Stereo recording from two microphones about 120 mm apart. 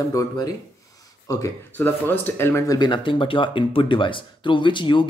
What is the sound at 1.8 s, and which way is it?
Speech, 15° left (ahead or behind).